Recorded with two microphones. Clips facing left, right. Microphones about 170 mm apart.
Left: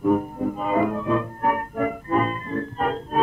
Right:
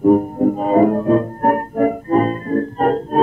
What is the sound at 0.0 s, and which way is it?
Music, 40° right (ahead or behind).